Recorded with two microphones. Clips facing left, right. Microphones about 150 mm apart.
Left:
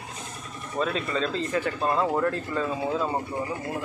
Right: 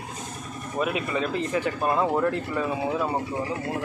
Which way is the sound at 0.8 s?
15° right (ahead or behind).